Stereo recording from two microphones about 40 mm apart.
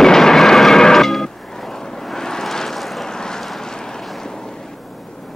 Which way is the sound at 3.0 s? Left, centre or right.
Centre.